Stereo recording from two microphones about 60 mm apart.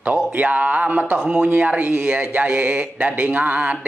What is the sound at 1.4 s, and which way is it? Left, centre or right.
A man's voice, right.